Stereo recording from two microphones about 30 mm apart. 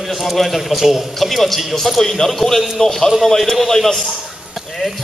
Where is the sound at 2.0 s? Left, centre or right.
Centre.